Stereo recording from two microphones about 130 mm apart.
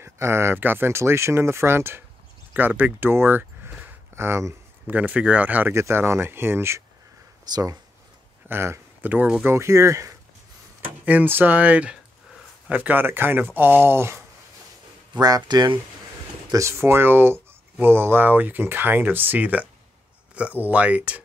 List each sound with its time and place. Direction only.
0.0 s speech: 20° right (ahead or behind)
15.1 s speech: 30° right (ahead or behind)
16.4 s speech: 25° right (ahead or behind)